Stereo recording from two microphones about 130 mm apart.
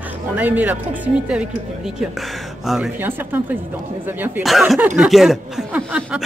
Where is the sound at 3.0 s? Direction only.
15° right (ahead or behind).